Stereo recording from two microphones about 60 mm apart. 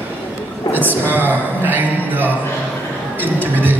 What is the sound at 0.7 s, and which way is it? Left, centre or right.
A man's voice, right.